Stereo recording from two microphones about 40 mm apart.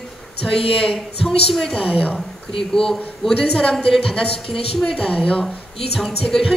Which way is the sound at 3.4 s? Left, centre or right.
Left.